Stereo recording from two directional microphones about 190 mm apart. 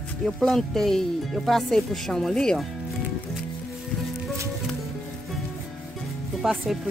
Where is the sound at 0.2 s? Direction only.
Centre (ahead or behind).